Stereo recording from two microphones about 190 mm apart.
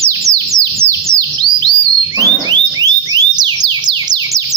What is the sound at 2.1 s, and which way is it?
Car alarm, 20° right (ahead or behind).